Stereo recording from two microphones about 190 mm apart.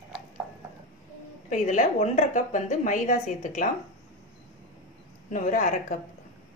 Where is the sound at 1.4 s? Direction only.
40° left (ahead or behind).